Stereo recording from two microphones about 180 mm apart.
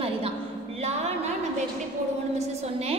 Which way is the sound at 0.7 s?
35° right (ahead or behind).